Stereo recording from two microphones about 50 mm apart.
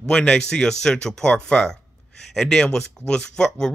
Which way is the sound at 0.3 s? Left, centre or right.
Centre.